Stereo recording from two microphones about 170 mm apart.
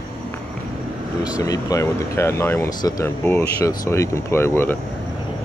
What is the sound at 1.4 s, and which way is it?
Speech, 20° left (ahead or behind).